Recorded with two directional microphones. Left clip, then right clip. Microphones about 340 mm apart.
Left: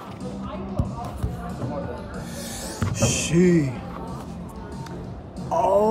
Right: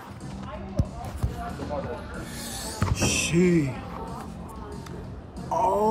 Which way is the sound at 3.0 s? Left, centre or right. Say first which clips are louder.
Left 1 dB; left.